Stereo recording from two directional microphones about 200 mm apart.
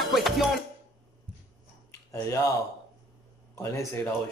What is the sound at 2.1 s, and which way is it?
Speech, 15° left (ahead or behind).